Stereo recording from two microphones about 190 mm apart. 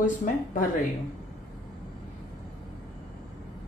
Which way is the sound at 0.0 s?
40° left (ahead or behind).